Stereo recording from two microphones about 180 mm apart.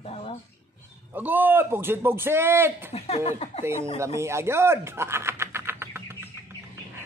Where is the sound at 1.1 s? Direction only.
10° right (ahead or behind).